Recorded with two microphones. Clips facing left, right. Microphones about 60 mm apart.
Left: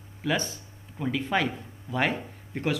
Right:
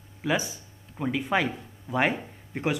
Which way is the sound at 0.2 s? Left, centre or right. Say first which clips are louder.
Right 1 dB; centre.